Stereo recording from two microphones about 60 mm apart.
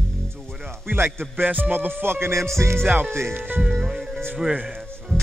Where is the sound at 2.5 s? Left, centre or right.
Right.